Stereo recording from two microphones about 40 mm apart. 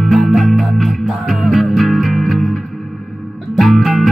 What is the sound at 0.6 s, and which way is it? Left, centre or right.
Music, centre.